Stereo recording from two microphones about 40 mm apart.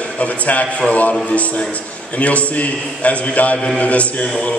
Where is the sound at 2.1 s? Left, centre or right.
Left.